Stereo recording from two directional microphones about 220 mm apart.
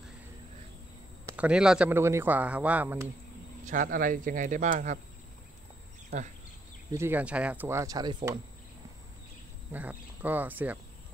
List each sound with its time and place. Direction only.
1.3 s speech: 5° right (ahead or behind)
3.6 s speech: 35° right (ahead or behind)
6.9 s speech: 10° right (ahead or behind)
9.7 s speech: 10° right (ahead or behind)